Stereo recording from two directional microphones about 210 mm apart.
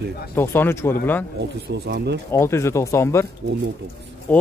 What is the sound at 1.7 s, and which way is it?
Speech, 55° right (ahead or behind).